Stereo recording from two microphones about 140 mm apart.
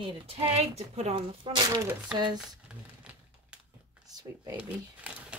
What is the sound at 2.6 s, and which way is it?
Typewriter, 5° right (ahead or behind).